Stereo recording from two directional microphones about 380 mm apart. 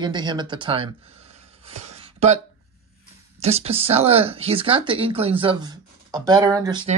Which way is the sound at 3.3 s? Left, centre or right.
Centre.